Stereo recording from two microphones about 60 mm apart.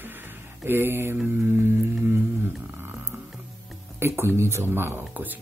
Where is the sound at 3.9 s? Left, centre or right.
Right.